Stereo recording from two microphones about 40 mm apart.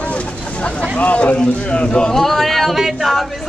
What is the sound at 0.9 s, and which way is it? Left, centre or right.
Speech, left.